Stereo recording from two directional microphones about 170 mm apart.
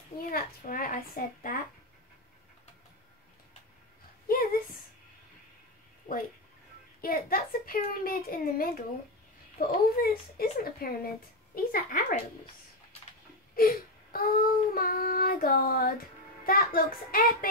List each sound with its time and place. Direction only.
0.3 s child singing: 60° left (ahead or behind)
4.3 s a sound: 60° left (ahead or behind)
7.0 s child singing: 60° left (ahead or behind)
13.6 s child singing: 60° left (ahead or behind)